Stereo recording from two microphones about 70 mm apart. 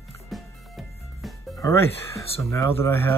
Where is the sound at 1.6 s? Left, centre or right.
Left.